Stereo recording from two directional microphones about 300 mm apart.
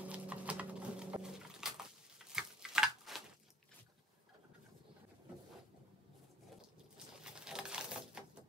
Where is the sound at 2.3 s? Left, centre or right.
Centre.